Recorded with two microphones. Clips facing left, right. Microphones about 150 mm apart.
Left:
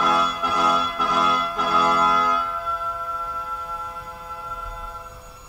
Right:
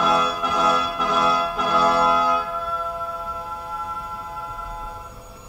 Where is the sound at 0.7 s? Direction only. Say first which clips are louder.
Right 1 dB; 5° right (ahead or behind).